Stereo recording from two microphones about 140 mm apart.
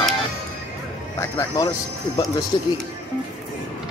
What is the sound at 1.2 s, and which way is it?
Speech, 25° left (ahead or behind).